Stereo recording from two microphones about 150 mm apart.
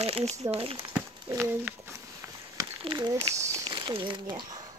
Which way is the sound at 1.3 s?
15° right (ahead or behind).